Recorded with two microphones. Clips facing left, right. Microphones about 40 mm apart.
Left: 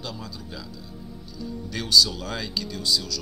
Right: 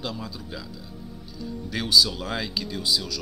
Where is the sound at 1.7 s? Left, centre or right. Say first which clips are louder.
Even; centre.